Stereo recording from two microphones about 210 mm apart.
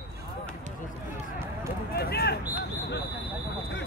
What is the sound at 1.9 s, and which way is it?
Speech, 50° left (ahead or behind).